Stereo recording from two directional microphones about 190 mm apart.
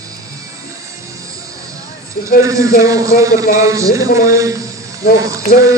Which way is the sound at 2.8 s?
15° right (ahead or behind).